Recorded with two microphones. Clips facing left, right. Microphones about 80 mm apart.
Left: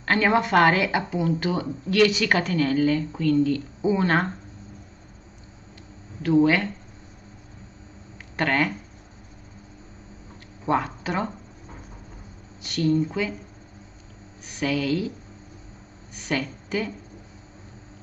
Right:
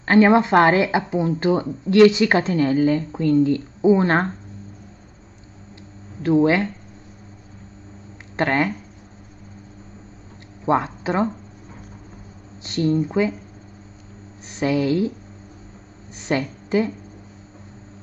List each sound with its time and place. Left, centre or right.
0.0 s speech: right
6.2 s speech: right
8.4 s speech: centre
10.6 s speech: centre
12.6 s speech: right
14.6 s speech: right
16.2 s a woman's voice: right